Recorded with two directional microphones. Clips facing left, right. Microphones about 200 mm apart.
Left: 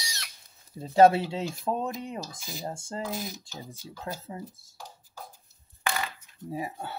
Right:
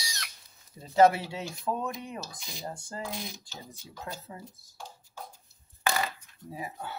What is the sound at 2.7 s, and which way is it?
Speech, 25° left (ahead or behind).